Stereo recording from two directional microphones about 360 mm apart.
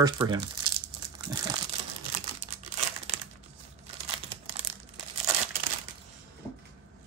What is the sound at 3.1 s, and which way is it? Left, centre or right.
Crumpling, centre.